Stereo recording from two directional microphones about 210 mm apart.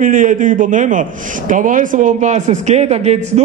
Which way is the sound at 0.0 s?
40° right (ahead or behind).